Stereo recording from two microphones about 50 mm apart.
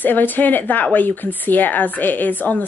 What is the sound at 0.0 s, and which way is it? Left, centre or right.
Speech, left.